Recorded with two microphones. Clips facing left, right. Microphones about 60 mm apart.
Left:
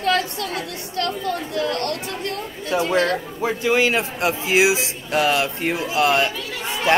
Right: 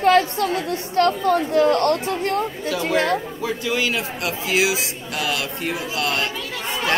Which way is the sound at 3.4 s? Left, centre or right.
Left.